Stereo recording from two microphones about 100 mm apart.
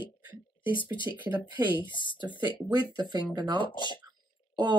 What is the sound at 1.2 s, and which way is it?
Speech, 20° right (ahead or behind).